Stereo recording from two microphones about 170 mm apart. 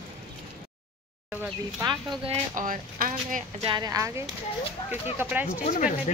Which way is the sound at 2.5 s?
55° right (ahead or behind).